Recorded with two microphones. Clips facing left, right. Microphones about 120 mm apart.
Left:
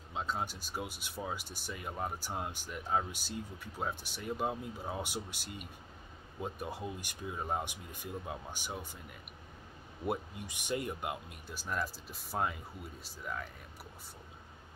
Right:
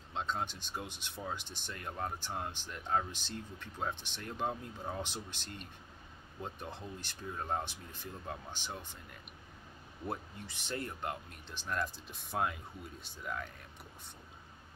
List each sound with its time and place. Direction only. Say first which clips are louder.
0.1 s speech: even; 5° left (ahead or behind)
10.0 s speech: left 4 dB; 15° left (ahead or behind)